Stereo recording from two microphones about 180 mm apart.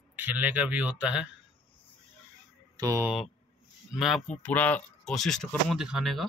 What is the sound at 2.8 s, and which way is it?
Speech, 20° right (ahead or behind).